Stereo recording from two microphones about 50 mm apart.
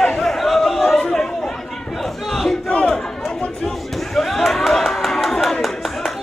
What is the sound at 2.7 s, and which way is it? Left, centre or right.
Chatter, left.